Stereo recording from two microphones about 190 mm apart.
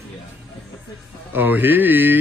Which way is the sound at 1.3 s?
10° right (ahead or behind).